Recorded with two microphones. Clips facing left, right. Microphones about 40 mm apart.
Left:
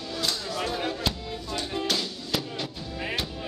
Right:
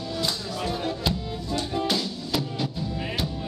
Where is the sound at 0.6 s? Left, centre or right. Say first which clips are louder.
Right 3 dB; centre.